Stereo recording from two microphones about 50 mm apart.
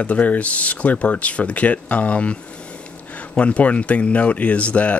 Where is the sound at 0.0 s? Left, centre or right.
Left.